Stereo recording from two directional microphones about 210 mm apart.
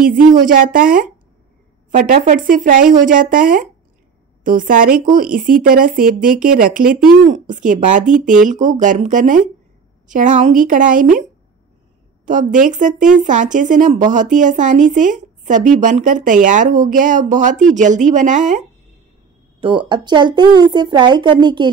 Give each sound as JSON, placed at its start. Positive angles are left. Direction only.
{"t": 0.0, "sound": "speech", "side_deg": -40}
{"t": 12.3, "sound": "speech", "side_deg": -40}
{"t": 19.6, "sound": "speech", "side_deg": -25}